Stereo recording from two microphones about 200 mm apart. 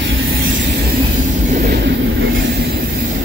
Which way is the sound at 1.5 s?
50° right (ahead or behind).